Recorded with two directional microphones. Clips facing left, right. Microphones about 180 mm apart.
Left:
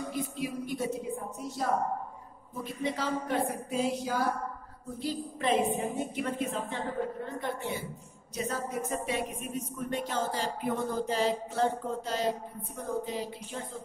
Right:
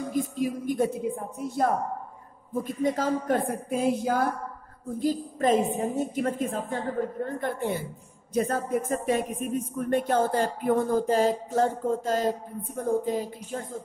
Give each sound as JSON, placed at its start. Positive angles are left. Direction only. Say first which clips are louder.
{"t": 0.1, "sound": "speech", "louder": "right 6 dB", "side_deg": -45}